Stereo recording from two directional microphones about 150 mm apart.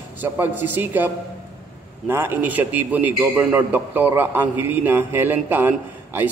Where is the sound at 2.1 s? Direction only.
15° right (ahead or behind).